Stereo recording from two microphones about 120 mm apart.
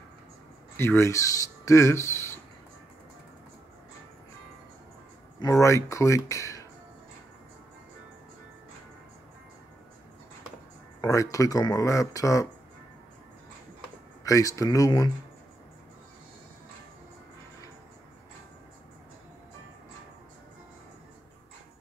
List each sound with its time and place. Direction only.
0.7 s speech: 20° left (ahead or behind)
5.4 s speech: 25° left (ahead or behind)
11.0 s speech: 30° left (ahead or behind)
14.2 s speech: 30° left (ahead or behind)